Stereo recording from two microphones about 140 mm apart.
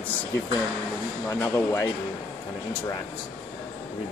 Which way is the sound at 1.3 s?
20° left (ahead or behind).